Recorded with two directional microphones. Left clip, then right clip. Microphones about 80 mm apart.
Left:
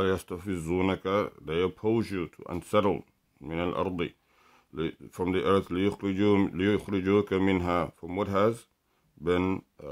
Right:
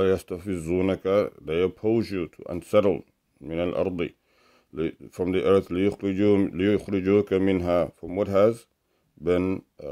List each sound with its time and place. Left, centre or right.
0.0 s speech: centre
9.8 s speech: right